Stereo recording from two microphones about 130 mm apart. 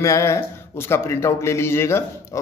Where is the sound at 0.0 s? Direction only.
20° left (ahead or behind).